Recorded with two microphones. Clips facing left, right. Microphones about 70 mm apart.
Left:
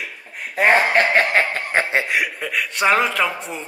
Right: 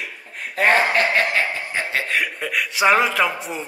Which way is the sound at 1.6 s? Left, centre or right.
Left.